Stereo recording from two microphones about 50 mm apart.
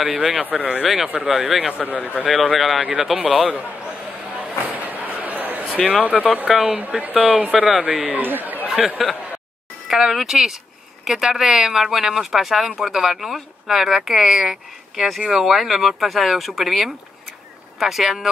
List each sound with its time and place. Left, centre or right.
0.0 s speech: centre
0.4 s speech: right
1.0 s speech: centre
1.7 s speech: right
2.2 s speech: centre
2.8 s speech: centre
3.3 s speech: centre
4.4 s a sound: right
5.8 s speech: centre
6.5 s speech: centre
7.0 s speech: right
8.2 s speech: right
8.6 s speech: centre